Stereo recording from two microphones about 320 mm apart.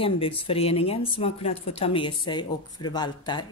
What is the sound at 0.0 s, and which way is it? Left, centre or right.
Speech, centre.